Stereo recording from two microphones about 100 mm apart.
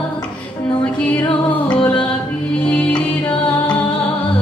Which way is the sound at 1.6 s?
15° left (ahead or behind).